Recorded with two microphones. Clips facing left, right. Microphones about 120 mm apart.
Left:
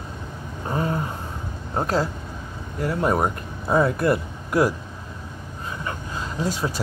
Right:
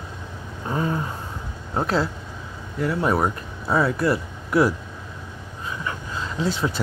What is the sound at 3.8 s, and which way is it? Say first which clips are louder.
Speech: left 1 dB; 50° left (ahead or behind).